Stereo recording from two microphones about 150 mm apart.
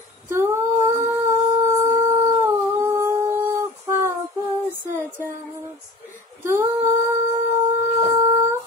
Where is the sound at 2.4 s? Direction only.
20° right (ahead or behind).